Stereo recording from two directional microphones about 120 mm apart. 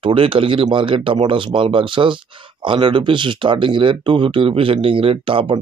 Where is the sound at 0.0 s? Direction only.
45° right (ahead or behind).